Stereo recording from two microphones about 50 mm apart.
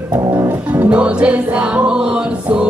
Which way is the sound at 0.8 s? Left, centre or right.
Right.